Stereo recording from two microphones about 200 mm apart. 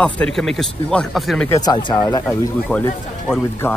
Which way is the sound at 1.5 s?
20° left (ahead or behind).